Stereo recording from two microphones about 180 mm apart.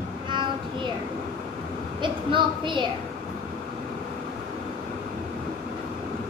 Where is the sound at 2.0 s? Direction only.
25° right (ahead or behind).